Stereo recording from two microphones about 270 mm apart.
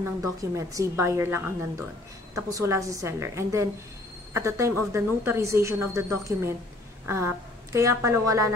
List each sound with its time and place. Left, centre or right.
0.0 s a woman's voice: centre